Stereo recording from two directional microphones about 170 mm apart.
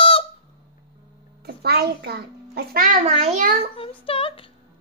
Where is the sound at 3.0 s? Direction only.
40° right (ahead or behind).